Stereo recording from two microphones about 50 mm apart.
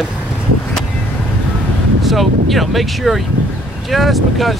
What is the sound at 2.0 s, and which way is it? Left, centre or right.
Speech, centre.